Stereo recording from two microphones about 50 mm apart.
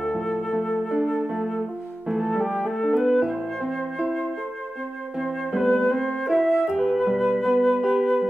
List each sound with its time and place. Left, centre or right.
0.0 s flute: centre
0.9 s music: centre
3.2 s flute: centre
5.2 s flute: centre
5.7 s music: centre
7.1 s flute: centre